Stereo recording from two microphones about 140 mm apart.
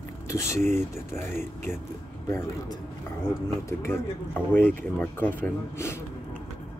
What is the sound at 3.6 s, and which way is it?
A man's voice, 20° left (ahead or behind).